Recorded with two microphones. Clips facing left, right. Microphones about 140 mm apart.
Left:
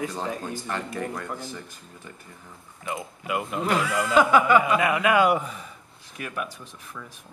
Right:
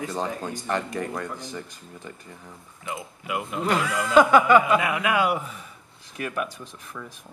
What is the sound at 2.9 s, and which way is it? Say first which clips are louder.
Speech: left 2 dB; centre (ahead or behind).